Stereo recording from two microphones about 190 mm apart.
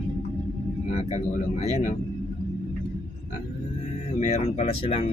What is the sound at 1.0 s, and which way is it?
Speech, 35° left (ahead or behind).